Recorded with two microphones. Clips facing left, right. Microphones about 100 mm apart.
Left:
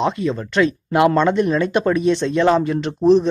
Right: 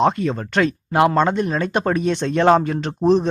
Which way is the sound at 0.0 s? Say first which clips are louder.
Right 2 dB; 45° right (ahead or behind).